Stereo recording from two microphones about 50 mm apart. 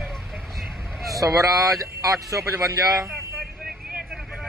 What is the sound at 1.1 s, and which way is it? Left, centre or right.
Speech, right.